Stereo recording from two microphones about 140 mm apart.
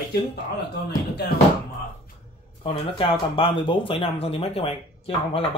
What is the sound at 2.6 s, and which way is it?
Speech, 40° left (ahead or behind).